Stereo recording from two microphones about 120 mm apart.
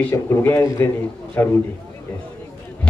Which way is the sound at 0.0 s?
15° left (ahead or behind).